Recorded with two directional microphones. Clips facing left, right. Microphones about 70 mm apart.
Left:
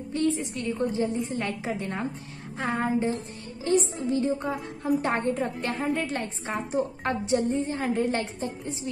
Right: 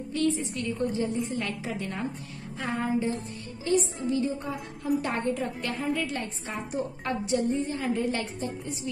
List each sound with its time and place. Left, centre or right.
0.1 s a woman's voice: left